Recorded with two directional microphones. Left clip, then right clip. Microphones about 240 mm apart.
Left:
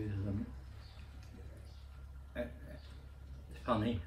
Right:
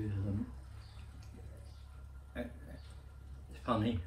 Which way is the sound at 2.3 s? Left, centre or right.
Centre.